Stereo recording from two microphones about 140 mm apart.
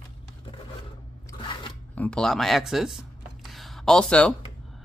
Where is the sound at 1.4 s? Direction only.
35° left (ahead or behind).